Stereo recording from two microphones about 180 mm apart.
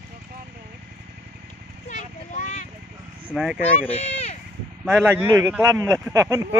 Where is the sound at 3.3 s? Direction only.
5° right (ahead or behind).